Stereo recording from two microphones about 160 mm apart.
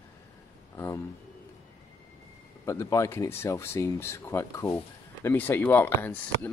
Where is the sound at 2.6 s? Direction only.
20° left (ahead or behind).